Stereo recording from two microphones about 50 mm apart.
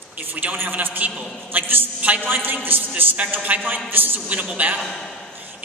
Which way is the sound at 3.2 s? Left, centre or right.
Right.